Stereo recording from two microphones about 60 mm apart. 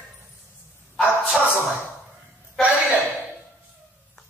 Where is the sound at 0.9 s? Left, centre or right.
Centre.